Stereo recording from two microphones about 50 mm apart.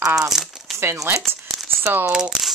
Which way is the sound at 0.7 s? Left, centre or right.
Right.